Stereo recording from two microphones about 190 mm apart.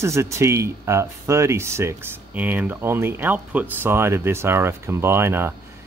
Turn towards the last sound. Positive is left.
turn(degrees=-10)  # may be behind; listen again after turning